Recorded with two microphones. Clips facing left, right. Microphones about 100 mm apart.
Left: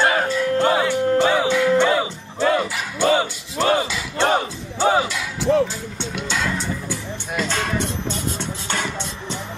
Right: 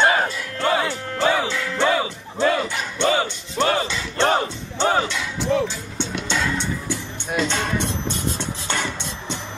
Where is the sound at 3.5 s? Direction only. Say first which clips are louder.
Left 2 dB; 5° left (ahead or behind).